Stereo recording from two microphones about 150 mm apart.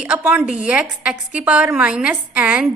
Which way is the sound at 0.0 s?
10° right (ahead or behind).